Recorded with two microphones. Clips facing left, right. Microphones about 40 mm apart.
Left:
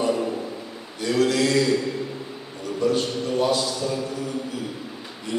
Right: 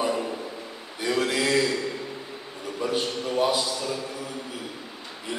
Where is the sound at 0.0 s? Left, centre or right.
Centre.